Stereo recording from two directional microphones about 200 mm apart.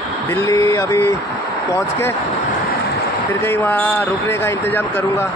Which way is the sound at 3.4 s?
10° left (ahead or behind).